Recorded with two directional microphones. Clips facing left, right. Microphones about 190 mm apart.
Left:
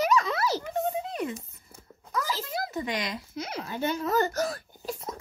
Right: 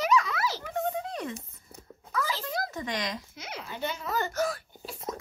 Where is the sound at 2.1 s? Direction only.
40° left (ahead or behind).